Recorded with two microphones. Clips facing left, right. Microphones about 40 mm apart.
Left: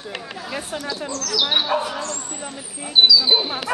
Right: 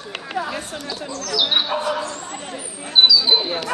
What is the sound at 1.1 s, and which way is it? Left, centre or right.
Speech, centre.